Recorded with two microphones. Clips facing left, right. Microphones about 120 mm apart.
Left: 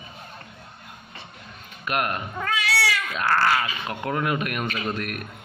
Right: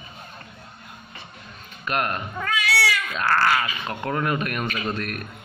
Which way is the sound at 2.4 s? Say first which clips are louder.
Right 1 dB; 30° left (ahead or behind).